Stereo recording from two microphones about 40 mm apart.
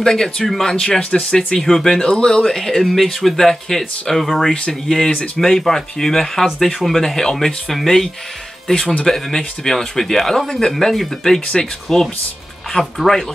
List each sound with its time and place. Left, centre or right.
0.0 s speech: centre
0.8 s speech: left
2.5 s speech: centre